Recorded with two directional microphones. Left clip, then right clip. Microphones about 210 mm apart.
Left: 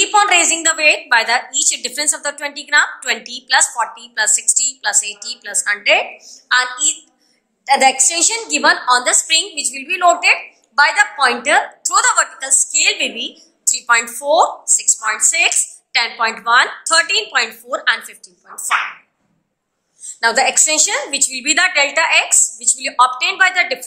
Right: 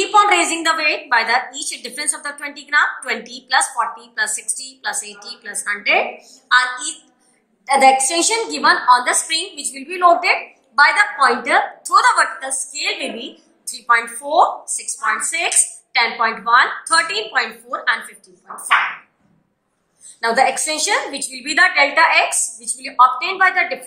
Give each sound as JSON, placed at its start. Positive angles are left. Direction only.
{"t": 0.0, "sound": "a woman's voice", "side_deg": 55}
{"t": 20.2, "sound": "a woman's voice", "side_deg": 60}